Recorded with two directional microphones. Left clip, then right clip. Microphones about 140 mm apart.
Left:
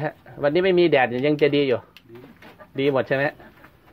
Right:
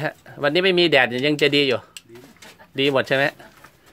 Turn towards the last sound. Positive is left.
turn(degrees=-45)  # may be behind; listen again after turning